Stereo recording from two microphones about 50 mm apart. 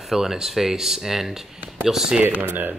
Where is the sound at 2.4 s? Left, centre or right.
Right.